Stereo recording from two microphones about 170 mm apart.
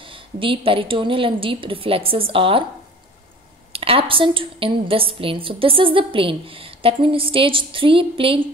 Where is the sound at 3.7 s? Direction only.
35° right (ahead or behind).